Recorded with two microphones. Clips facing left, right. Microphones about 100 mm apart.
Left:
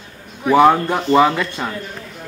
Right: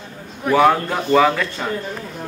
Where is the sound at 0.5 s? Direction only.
20° left (ahead or behind).